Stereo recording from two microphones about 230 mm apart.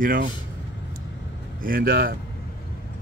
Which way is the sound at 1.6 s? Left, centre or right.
Right.